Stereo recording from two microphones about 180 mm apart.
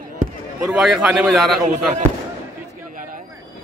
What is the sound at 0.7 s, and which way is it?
Speech, centre (ahead or behind).